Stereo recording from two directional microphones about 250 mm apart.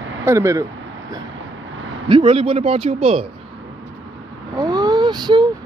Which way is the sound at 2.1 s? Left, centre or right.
Right.